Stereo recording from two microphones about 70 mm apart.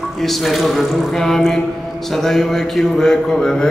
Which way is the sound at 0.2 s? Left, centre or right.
Centre.